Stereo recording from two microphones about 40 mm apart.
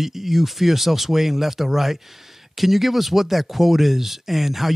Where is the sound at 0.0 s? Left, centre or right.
Centre.